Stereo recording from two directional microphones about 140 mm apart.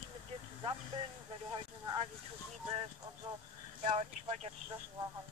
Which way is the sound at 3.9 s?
50° right (ahead or behind).